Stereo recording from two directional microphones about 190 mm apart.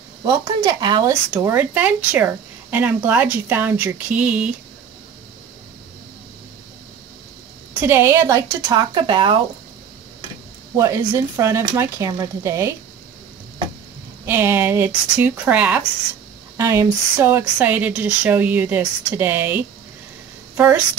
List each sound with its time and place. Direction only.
0.2 s speech: 20° right (ahead or behind)
1.3 s speech: 10° right (ahead or behind)
7.8 s speech: 10° right (ahead or behind)
10.8 s speech: 15° right (ahead or behind)
14.2 s speech: 10° right (ahead or behind)